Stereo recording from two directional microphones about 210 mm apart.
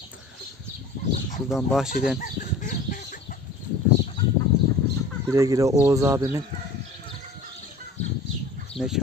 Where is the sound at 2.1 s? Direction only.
40° left (ahead or behind).